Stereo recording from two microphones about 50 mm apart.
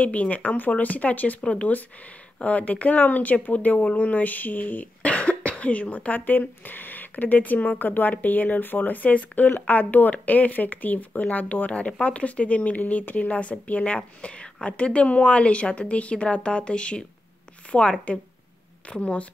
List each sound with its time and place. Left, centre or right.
0.0 s a woman's voice: left